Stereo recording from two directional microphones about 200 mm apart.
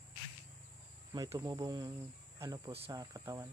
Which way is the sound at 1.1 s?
20° right (ahead or behind).